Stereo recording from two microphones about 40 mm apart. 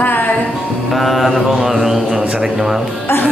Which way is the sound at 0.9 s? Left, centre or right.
Centre.